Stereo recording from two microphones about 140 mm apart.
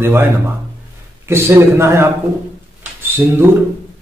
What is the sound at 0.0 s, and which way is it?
A man's voice, 15° right (ahead or behind).